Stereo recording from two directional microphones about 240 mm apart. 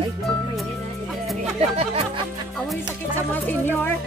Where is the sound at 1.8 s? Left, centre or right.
Right.